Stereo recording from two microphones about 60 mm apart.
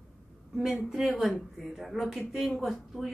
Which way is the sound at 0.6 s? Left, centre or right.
Centre.